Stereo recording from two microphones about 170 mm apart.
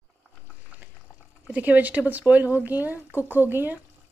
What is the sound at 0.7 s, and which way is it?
Water, 10° right (ahead or behind).